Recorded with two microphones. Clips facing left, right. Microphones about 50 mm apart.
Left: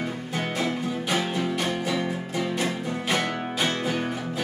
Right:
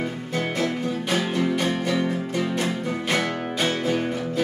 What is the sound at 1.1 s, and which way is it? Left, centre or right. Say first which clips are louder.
Music: right 3 dB; centre.